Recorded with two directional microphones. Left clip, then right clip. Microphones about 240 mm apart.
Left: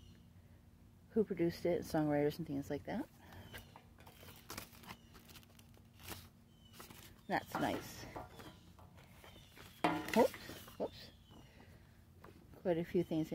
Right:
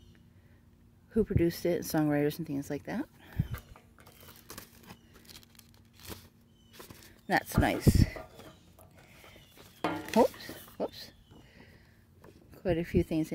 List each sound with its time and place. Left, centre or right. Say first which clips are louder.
1.1 s speech: right 7 dB; right
4.0 s a sound: right 5 dB; centre
7.2 s speech: right 9 dB; right
9.2 s music: right 2 dB; centre
10.1 s a sound: right 9 dB; right
12.6 s speech: right 6 dB; right